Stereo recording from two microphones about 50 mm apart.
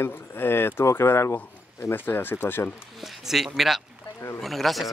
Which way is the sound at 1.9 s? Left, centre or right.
Left.